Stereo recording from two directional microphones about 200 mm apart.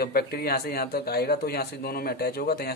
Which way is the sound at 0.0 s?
50° left (ahead or behind).